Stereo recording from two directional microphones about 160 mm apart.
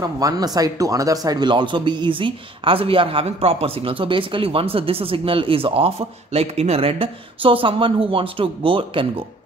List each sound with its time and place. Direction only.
0.0 s speech: 25° right (ahead or behind)